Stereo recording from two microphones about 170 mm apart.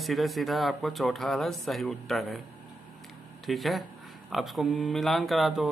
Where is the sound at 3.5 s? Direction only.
Centre (ahead or behind).